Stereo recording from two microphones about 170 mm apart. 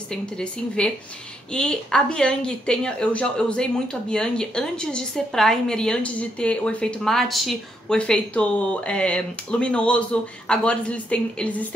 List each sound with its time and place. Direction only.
0.1 s a woman's voice: 5° left (ahead or behind)